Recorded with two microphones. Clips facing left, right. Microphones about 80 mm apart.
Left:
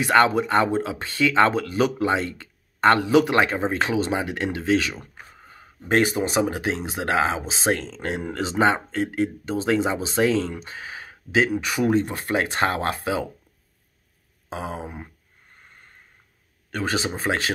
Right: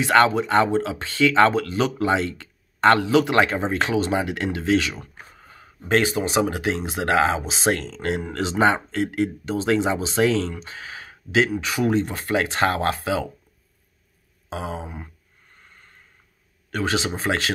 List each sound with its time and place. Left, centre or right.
0.0 s speech: centre
5.9 s speech: left
6.3 s speech: centre
10.5 s speech: left
14.5 s a sound: left
14.8 s speech: centre
16.7 s speech: centre